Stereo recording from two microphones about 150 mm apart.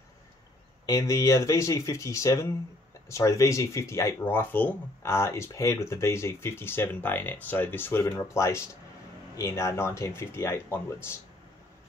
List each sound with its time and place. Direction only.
0.8 s speech: 25° left (ahead or behind)